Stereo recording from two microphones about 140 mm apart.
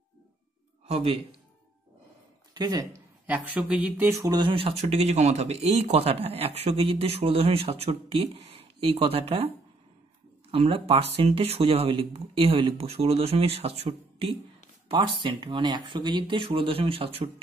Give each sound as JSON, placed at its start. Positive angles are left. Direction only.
{"t": 0.8, "sound": "speech", "side_deg": -45}
{"t": 2.5, "sound": "speech", "side_deg": -30}
{"t": 3.3, "sound": "speech", "side_deg": -10}
{"t": 4.2, "sound": "speech", "side_deg": -30}
{"t": 10.5, "sound": "speech", "side_deg": -45}